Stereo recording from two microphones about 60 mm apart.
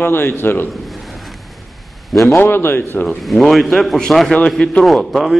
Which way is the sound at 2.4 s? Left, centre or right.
Left.